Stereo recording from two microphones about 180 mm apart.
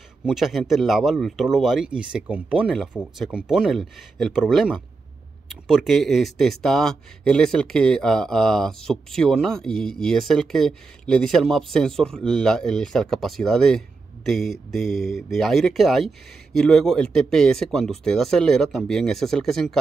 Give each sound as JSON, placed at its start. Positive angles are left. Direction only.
{"t": 0.2, "sound": "speech", "side_deg": 0}